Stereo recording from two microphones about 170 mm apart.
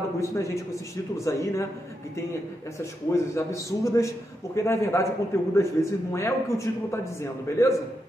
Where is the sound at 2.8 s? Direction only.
15° left (ahead or behind).